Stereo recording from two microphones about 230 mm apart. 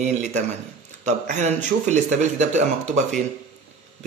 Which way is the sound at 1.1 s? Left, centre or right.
Right.